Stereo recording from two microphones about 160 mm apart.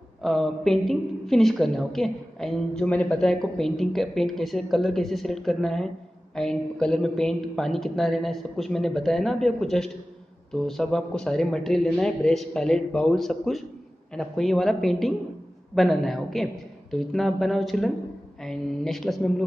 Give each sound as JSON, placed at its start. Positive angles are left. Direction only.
{"t": 0.2, "sound": "a woman's voice", "side_deg": 0}